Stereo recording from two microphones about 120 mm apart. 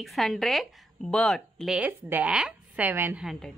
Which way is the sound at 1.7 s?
10° right (ahead or behind).